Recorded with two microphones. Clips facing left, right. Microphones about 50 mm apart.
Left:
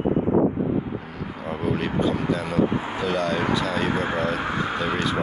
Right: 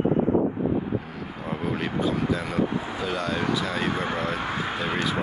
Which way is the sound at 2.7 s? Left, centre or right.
Left.